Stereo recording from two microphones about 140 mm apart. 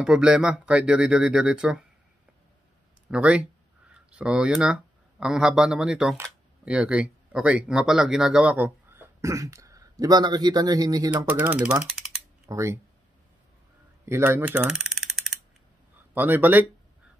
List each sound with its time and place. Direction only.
0.0 s speech: 5° right (ahead or behind)
3.1 s speech: 10° right (ahead or behind); by 11.1 s 25° right (ahead or behind)
11.2 s speech: 10° right (ahead or behind)
12.4 s speech: 20° right (ahead or behind)
14.0 s speech: 20° right (ahead or behind)
14.6 s a sound: 5° right (ahead or behind)
16.2 s speech: 15° right (ahead or behind)